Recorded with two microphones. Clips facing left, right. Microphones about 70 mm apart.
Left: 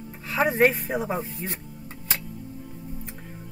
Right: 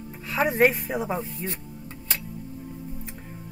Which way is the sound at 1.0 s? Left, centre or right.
Centre.